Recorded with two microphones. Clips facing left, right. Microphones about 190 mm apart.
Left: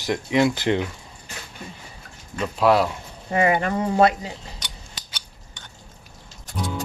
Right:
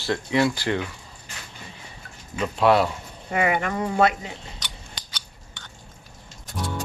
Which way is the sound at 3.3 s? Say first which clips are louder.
Left 3 dB; 30° left (ahead or behind).